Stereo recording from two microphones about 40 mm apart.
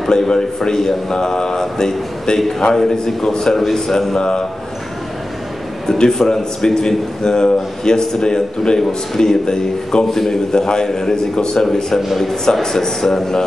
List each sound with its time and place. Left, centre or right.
0.1 s a man's voice: centre
4.2 s a man's voice: left
5.9 s a man's voice: centre